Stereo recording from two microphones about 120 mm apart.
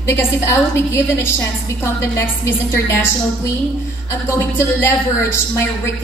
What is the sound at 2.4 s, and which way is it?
Speech, 20° left (ahead or behind).